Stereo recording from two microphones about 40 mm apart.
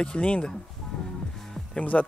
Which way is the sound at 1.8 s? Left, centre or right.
Left.